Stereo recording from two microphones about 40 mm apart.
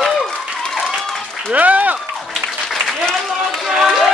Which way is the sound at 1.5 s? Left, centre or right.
Right.